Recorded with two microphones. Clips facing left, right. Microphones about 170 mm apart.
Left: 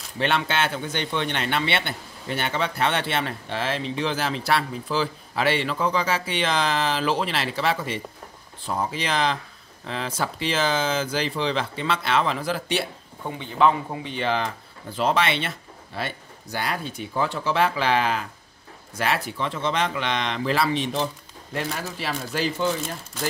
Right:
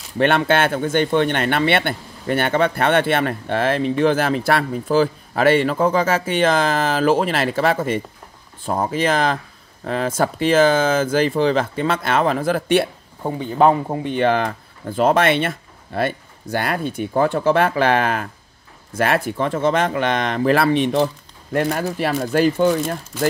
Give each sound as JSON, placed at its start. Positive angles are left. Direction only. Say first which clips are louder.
{"t": 0.2, "sound": "speech", "louder": "right 7 dB", "side_deg": -55}